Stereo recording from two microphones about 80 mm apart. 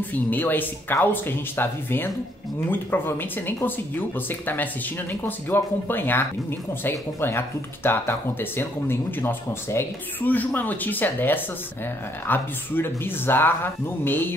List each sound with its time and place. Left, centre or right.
0.1 s speech: left